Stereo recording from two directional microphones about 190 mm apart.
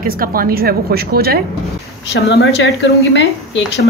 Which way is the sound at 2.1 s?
70° left (ahead or behind).